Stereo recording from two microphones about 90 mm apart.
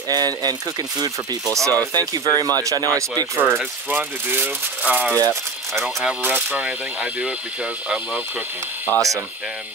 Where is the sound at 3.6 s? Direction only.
15° right (ahead or behind).